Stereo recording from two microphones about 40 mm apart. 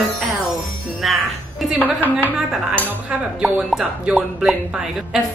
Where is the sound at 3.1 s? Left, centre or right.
Right.